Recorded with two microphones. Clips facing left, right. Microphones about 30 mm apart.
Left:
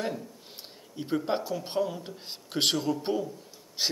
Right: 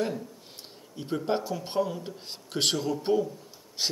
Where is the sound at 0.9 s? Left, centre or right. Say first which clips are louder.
Even; centre.